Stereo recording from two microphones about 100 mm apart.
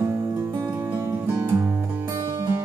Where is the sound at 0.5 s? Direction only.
25° right (ahead or behind).